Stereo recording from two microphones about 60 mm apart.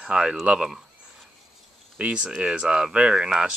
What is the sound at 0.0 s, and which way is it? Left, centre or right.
Speech, centre.